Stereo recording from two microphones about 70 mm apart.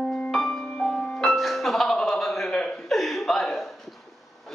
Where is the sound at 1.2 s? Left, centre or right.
Centre.